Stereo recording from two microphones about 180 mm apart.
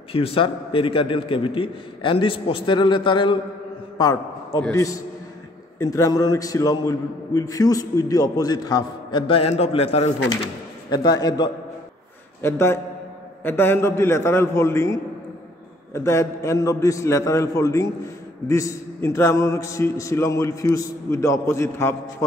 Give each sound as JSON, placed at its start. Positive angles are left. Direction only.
{"t": 0.1, "sound": "a man's voice", "side_deg": 30}
{"t": 10.9, "sound": "a man's voice", "side_deg": 25}